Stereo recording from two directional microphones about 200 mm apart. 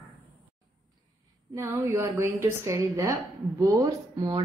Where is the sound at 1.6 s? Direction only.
10° right (ahead or behind).